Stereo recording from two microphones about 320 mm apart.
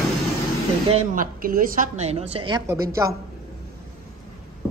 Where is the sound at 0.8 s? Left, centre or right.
Right.